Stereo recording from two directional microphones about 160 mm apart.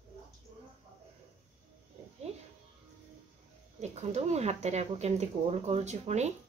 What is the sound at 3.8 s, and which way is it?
Speech, 45° right (ahead or behind).